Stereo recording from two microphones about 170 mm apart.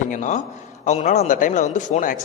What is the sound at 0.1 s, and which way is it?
A man's voice, 50° left (ahead or behind).